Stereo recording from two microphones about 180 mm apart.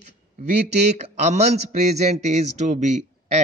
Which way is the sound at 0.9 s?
40° right (ahead or behind).